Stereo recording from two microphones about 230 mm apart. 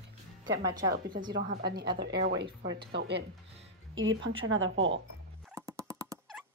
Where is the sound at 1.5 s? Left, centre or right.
Right.